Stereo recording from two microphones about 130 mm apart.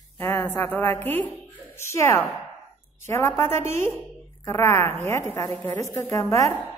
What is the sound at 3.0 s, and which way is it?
Speech, 20° left (ahead or behind).